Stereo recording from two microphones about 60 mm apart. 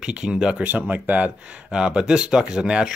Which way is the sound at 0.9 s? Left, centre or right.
Right.